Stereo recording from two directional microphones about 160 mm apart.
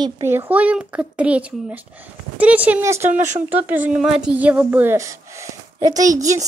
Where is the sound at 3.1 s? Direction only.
50° right (ahead or behind).